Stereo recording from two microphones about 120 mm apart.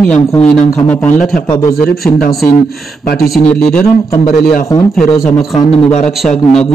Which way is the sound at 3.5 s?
5° left (ahead or behind).